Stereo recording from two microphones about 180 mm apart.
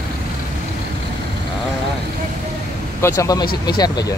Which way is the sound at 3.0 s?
15° left (ahead or behind).